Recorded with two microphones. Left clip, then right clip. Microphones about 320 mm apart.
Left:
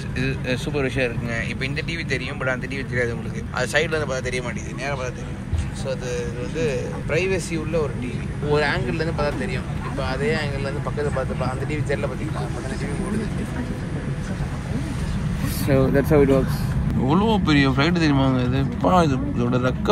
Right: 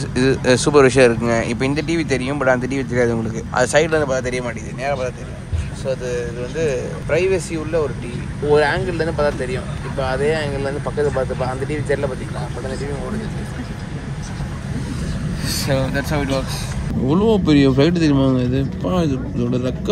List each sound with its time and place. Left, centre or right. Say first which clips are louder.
0.1 s speech: right 10 dB; right
0.7 s speech: right 13 dB; right
1.3 s speech: right 7 dB; right
15.9 s speech: left 4 dB; centre